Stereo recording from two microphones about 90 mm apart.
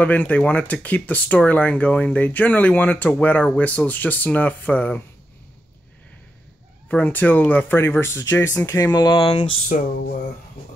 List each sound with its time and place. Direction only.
0.0 s speech: 15° left (ahead or behind)
6.9 s speech: 20° left (ahead or behind)
8.6 s speech: 40° left (ahead or behind); by 9.5 s 65° left (ahead or behind)